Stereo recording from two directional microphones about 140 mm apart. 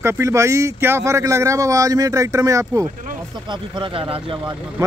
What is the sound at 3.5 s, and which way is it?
Speech, 35° right (ahead or behind).